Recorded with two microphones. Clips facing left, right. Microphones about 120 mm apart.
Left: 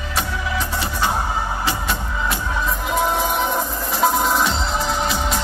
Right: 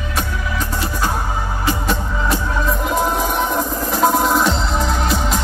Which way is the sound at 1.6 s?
45° right (ahead or behind).